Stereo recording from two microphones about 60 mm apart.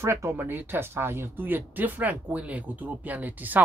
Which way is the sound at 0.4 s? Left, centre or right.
Right.